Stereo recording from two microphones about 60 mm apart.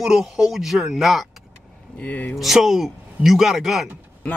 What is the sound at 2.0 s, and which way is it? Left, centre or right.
Speech, left.